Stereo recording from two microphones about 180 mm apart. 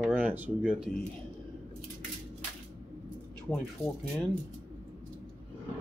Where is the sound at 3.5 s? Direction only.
Centre (ahead or behind).